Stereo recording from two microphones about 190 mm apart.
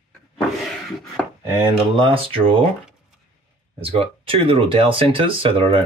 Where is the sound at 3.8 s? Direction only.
30° right (ahead or behind).